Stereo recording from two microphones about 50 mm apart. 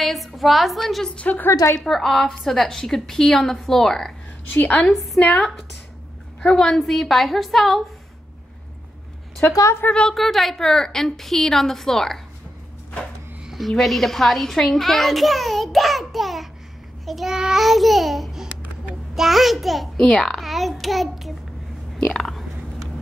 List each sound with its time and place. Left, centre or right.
0.0 s a child's voice: centre
1.0 s a woman's voice: left
1.9 s a child's voice: centre
6.4 s a child's voice: centre
9.4 s a woman's voice: left
10.1 s a woman's voice: centre
13.6 s a child's voice: centre
21.9 s burping: centre